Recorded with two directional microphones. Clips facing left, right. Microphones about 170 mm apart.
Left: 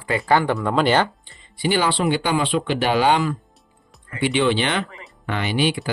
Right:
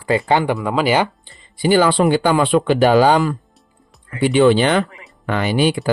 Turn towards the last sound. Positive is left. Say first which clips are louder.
# right 5 dB
turn(degrees=-45)  # may be behind; listen again after turning